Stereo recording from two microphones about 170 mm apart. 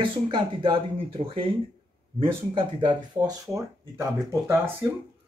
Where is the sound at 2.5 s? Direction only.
25° right (ahead or behind).